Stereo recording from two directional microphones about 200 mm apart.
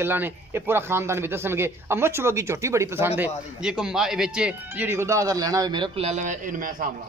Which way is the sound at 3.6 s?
5° right (ahead or behind).